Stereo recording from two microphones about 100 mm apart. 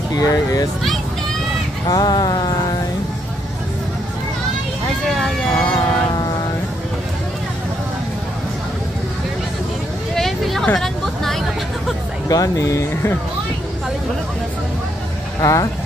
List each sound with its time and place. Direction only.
0.1 s speech: 35° left (ahead or behind)
1.9 s speech: 40° left (ahead or behind)
5.0 s speech: 5° left (ahead or behind)
10.1 s a sound: centre (ahead or behind)
10.7 s vehicle: 5° left (ahead or behind)
12.3 s speech: 35° left (ahead or behind)
15.4 s speech: 35° left (ahead or behind)